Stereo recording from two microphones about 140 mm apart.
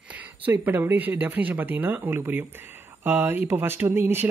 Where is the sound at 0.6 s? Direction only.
15° right (ahead or behind).